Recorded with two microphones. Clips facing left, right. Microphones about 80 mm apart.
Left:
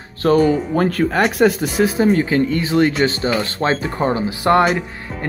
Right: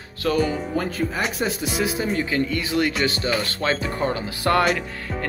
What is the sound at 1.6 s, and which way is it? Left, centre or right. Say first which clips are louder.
Speech: left 8 dB; left.